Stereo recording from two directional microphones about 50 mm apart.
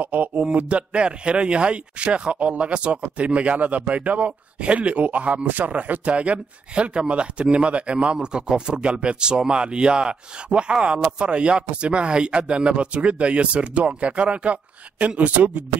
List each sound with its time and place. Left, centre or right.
0.0 s speech: right
0.5 s speech: right